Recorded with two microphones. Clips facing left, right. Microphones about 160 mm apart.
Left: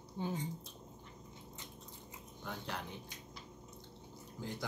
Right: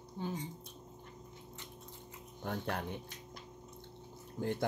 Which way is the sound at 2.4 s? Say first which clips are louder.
Right 6 dB; 55° right (ahead or behind).